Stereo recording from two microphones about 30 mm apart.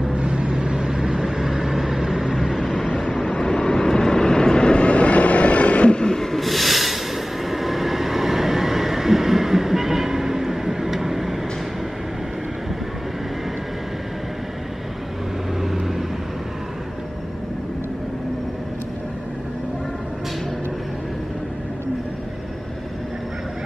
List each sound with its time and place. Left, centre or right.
0.1 s vehicle: right; by 2.8 s centre
3.0 s vehicle: centre
3.3 s vehicle: left
5.9 s vehicle: left
6.1 s a sound: centre
7.4 s train: centre